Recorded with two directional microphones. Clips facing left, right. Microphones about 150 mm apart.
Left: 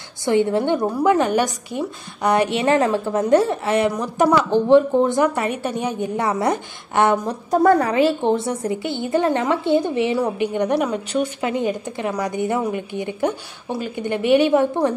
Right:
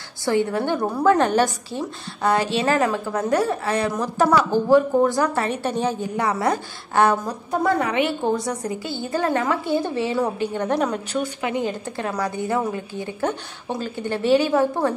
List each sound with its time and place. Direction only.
0.2 s a woman's voice: 20° left (ahead or behind)
7.6 s a woman's voice: 35° left (ahead or behind); by 11.0 s 10° left (ahead or behind)
11.4 s a woman's voice: 20° left (ahead or behind)